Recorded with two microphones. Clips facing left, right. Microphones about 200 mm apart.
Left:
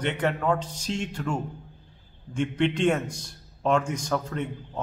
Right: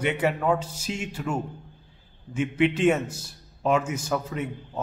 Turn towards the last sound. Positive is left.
turn(degrees=-5)  # may be behind; listen again after turning